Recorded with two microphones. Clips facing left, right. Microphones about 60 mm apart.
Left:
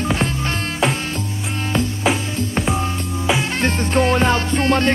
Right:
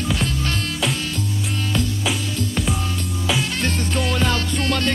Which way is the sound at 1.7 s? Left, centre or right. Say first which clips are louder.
Left 6 dB; left.